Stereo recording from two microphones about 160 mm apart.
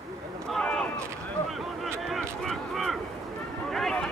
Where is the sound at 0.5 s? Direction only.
5° left (ahead or behind).